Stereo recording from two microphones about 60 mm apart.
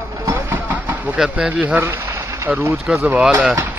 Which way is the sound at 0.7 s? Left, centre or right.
Right.